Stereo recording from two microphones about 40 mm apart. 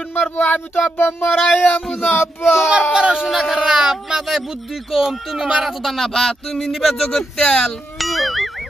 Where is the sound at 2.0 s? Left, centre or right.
Left.